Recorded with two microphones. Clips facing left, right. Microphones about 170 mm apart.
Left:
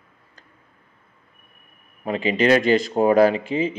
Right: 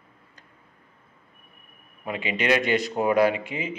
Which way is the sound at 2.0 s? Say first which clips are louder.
Left 7 dB; 35° left (ahead or behind).